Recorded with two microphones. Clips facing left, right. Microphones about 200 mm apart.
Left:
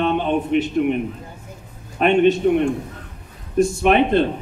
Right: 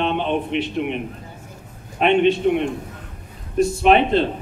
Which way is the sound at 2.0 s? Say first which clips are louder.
Left 1 dB; 45° left (ahead or behind).